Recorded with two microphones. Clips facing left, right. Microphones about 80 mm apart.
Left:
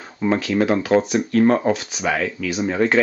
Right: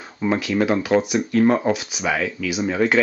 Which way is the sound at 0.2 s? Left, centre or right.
Centre.